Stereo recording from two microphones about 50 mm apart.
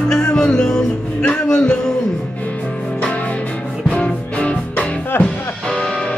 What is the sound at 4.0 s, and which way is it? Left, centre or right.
Music, left.